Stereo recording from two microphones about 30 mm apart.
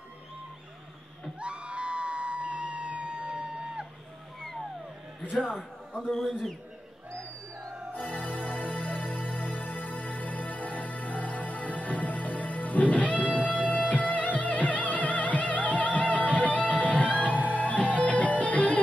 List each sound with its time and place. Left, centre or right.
1.4 s a sound: right
5.5 s a man's voice: centre
6.0 s a man's voice: centre
7.9 s music: left
17.0 s music: right
18.2 s music: left